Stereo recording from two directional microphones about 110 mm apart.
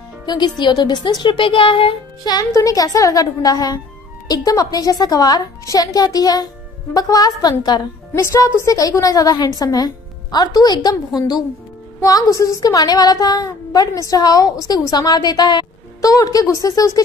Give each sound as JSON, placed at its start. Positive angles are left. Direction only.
{"t": 0.6, "sound": "speech", "side_deg": 40}
{"t": 2.2, "sound": "a woman's voice", "side_deg": 35}
{"t": 8.1, "sound": "a woman's voice", "side_deg": 25}